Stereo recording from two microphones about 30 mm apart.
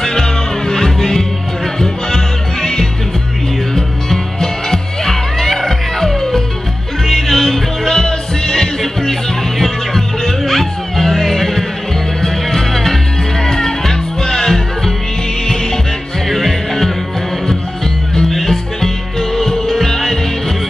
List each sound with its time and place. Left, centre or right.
0.0 s music: centre
16.3 s music: centre
18.3 s music: centre